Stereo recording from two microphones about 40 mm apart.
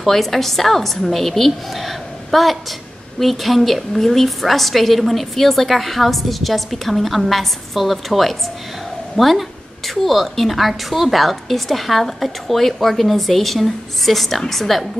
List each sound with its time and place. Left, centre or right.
0.0 s a woman's voice: centre